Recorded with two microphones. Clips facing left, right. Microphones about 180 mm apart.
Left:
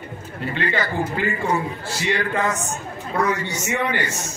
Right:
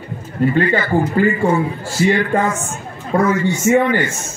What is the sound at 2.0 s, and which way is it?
A man's voice, 45° right (ahead or behind).